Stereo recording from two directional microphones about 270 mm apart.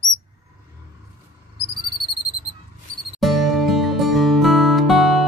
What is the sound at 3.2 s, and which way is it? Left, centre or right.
Music, centre.